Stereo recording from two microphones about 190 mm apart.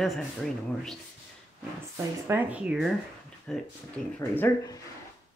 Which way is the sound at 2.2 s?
10° right (ahead or behind).